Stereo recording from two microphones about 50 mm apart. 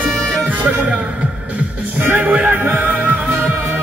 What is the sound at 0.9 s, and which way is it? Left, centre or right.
Music, right.